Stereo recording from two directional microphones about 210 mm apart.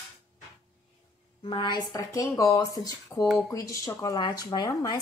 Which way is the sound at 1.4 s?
20° left (ahead or behind).